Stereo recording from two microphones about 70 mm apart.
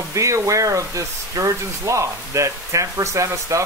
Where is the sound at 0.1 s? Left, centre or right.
Right.